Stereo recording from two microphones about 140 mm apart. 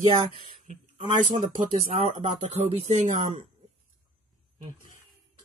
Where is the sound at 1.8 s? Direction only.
50° right (ahead or behind).